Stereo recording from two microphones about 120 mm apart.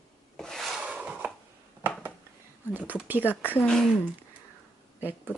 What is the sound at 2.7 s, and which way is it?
Speech, 15° right (ahead or behind).